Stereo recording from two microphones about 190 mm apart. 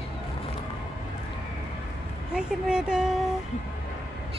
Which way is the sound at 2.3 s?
5° right (ahead or behind).